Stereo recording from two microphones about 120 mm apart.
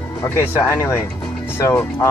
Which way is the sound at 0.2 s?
20° left (ahead or behind).